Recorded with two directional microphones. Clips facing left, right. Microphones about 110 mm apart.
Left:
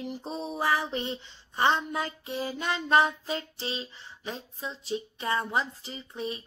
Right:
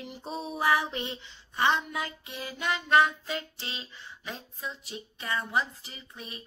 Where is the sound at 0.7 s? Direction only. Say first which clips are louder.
Right 2 dB; 30° left (ahead or behind).